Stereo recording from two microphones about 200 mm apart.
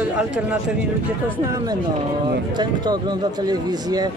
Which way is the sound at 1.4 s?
15° right (ahead or behind).